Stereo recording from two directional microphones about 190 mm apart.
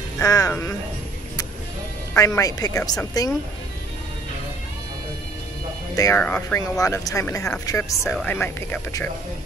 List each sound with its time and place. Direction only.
0.2 s speech: 15° left (ahead or behind)
2.1 s speech: 15° left (ahead or behind)
5.9 s speech: 15° left (ahead or behind)
8.0 s speech: centre (ahead or behind)
8.3 s speech: 10° left (ahead or behind)